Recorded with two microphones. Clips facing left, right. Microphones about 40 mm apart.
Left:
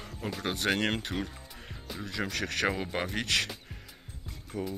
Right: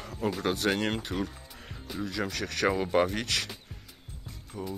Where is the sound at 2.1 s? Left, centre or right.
Left.